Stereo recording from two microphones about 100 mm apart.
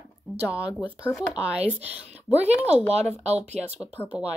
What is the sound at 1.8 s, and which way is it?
Speech, 90° right.